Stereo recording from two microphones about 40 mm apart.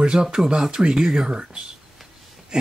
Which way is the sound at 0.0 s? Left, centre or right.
Right.